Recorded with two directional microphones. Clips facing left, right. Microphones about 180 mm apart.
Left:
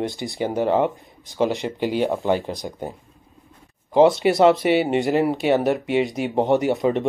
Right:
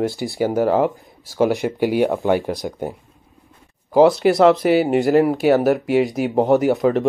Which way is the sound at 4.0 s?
Centre (ahead or behind).